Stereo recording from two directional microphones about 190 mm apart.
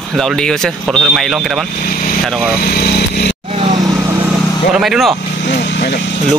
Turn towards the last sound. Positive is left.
turn(degrees=55)  # may be behind; listen again after turning